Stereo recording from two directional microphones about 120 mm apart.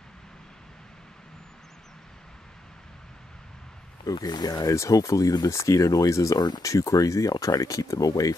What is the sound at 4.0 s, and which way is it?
Speech, 35° left (ahead or behind).